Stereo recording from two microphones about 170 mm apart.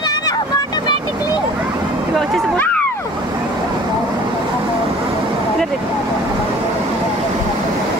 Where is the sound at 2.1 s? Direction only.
5° left (ahead or behind).